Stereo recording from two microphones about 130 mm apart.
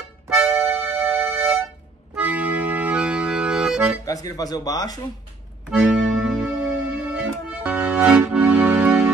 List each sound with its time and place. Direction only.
0.4 s music: 5° right (ahead or behind)
2.1 s accordion: 10° right (ahead or behind)
4.0 s speech: 30° left (ahead or behind)
5.7 s music: 5° right (ahead or behind)